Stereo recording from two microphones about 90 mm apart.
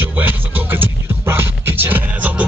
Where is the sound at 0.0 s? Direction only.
20° right (ahead or behind).